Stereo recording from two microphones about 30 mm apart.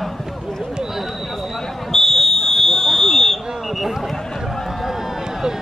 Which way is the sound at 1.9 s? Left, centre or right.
Centre.